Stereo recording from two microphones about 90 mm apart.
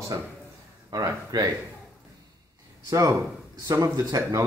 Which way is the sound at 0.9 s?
40° right (ahead or behind).